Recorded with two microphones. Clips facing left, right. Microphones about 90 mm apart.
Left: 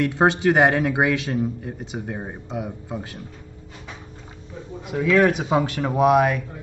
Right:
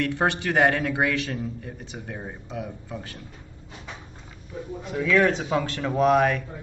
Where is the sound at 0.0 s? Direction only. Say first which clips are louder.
Left 6 dB; 20° left (ahead or behind).